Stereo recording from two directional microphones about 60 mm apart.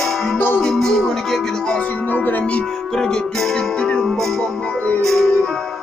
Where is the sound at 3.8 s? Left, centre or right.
Centre.